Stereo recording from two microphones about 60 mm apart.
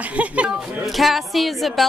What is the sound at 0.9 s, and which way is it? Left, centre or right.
Speech, centre.